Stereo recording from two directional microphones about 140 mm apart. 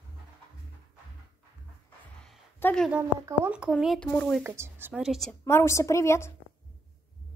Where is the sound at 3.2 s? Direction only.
10° right (ahead or behind).